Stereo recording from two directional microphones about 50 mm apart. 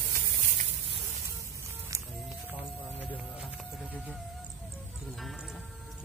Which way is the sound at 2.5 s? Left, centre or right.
Left.